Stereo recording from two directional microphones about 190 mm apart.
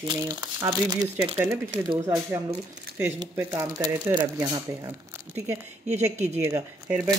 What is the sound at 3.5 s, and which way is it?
Speech, 20° right (ahead or behind).